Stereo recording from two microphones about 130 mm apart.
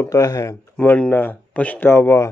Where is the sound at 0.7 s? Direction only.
10° left (ahead or behind).